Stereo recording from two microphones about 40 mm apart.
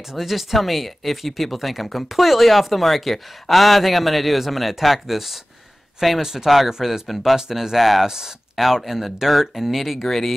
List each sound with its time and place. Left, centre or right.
0.1 s speech: centre
10.0 s speech: centre